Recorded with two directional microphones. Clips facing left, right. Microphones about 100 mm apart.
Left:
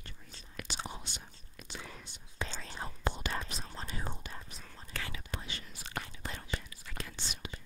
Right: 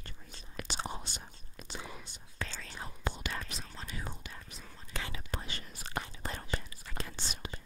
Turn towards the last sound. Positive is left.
turn(degrees=-40)  # may be behind; listen again after turning